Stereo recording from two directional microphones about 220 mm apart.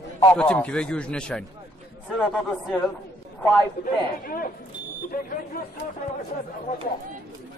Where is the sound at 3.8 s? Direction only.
40° left (ahead or behind).